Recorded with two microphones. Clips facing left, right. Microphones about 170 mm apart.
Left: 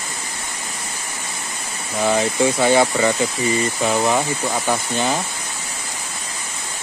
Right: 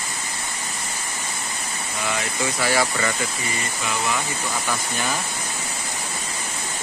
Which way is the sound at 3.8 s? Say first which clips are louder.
Left 6 dB; 35° left (ahead or behind).